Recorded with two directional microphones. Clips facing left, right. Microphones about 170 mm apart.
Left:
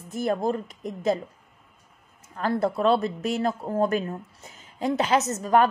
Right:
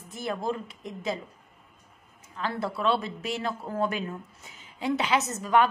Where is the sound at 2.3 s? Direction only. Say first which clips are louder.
Left 6 dB; 45° left (ahead or behind).